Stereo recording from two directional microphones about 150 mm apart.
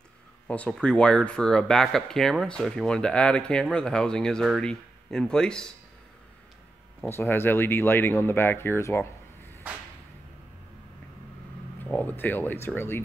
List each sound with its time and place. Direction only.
0.5 s speech: 10° left (ahead or behind)
7.0 s speech: 15° left (ahead or behind)
11.8 s speech: 10° left (ahead or behind)